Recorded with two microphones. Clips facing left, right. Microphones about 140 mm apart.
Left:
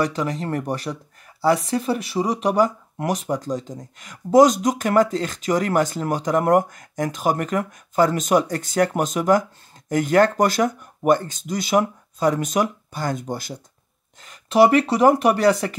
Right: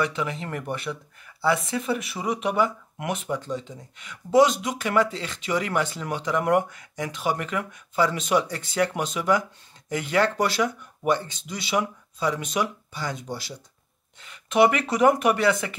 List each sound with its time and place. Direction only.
0.0 s speech: 40° left (ahead or behind)